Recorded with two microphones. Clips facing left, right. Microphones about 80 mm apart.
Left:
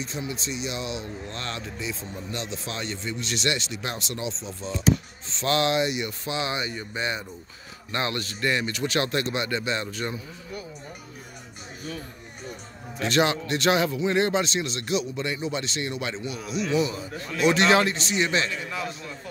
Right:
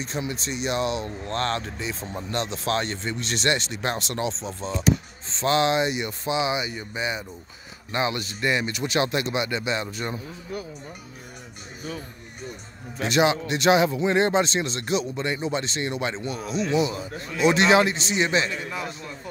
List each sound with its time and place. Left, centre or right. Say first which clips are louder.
0.3 s speech: right 4 dB; right
5.3 s speech: right 2 dB; right
13.0 s speech: right 2 dB; centre
13.9 s speech: right 2 dB; right
16.7 s speech: even; right